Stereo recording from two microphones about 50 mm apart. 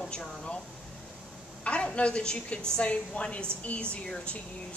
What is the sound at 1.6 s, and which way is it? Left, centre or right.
A woman's voice, left.